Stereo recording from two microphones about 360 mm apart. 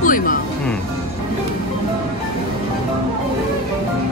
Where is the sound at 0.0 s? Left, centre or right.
Left.